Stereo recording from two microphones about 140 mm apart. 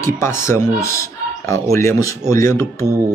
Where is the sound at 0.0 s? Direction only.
20° left (ahead or behind).